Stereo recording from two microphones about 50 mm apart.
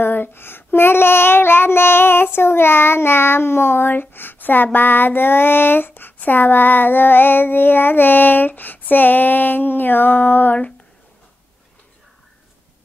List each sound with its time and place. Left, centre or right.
0.0 s child singing: left
4.7 s female singing: left
6.1 s child singing: left